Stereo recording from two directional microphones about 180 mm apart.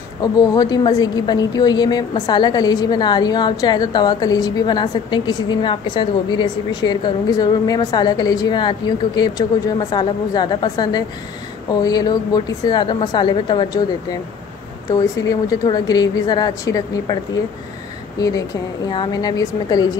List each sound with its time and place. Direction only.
0.2 s a woman's voice: 20° left (ahead or behind)
14.9 s a woman's voice: 20° left (ahead or behind)
18.9 s a woman's voice: 25° left (ahead or behind)